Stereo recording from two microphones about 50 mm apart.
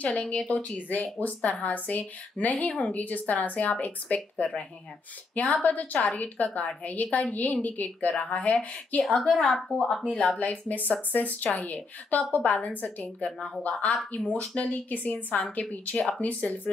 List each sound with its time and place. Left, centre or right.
0.5 s speech: left
9.3 s speech: centre
10.4 s speech: left
13.2 s speech: left